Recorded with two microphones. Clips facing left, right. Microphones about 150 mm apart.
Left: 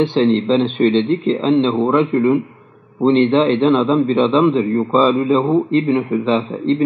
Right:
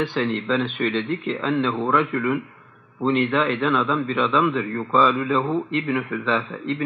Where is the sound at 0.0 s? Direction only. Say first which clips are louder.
Left 9 dB; 25° left (ahead or behind).